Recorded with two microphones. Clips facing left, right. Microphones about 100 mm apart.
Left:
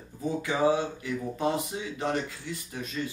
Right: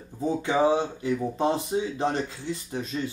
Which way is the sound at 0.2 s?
25° right (ahead or behind).